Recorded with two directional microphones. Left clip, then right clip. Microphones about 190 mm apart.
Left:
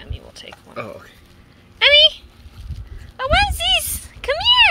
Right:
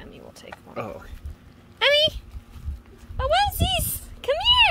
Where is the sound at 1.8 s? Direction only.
20° right (ahead or behind).